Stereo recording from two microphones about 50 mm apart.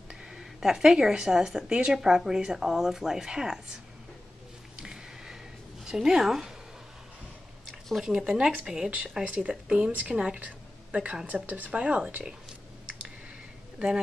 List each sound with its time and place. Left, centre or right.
0.1 s speech: centre
4.8 s a sound: centre
5.9 s speech: centre
8.0 s speech: centre
9.2 s speech: right
11.7 s speech: right
13.7 s speech: centre